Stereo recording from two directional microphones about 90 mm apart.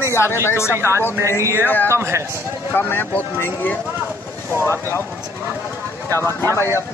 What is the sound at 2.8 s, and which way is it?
Speech, 20° left (ahead or behind).